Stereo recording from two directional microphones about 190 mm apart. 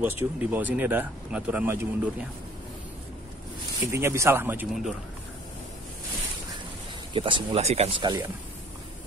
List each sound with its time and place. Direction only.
0.0 s speech: 10° right (ahead or behind)
3.9 s speech: 15° right (ahead or behind)
7.2 s speech: 25° right (ahead or behind)